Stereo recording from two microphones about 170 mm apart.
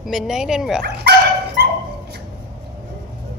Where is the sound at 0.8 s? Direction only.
80° right.